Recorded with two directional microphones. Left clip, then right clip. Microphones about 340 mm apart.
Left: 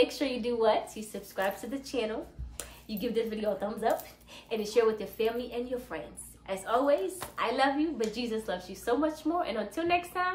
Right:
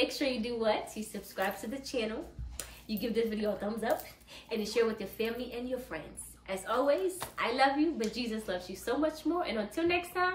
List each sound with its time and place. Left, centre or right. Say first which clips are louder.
0.0 s a woman's voice: left 3 dB; centre